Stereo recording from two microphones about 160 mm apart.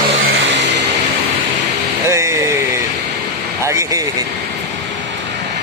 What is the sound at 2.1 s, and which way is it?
Speech, 20° right (ahead or behind).